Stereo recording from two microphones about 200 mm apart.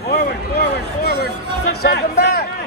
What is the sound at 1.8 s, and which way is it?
Music, 55° left (ahead or behind).